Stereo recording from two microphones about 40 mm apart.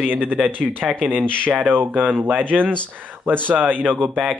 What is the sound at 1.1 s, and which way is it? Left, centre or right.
Speech, right.